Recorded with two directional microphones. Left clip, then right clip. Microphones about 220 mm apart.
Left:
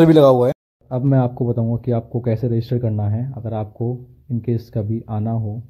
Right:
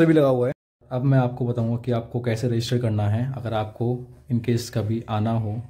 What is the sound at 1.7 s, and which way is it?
Speech, 15° left (ahead or behind).